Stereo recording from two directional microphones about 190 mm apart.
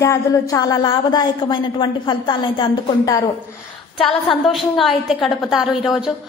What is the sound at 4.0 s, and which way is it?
A woman's voice, centre (ahead or behind).